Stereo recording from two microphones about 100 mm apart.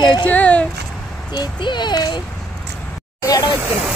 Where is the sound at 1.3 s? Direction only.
50° left (ahead or behind).